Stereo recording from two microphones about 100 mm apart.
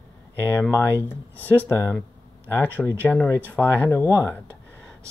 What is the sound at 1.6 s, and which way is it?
Speech, 25° left (ahead or behind).